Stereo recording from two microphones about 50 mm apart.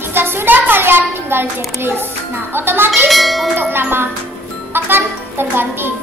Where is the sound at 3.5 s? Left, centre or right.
Right.